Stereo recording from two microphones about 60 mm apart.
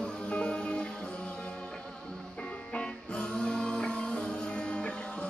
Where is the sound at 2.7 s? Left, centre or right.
Centre.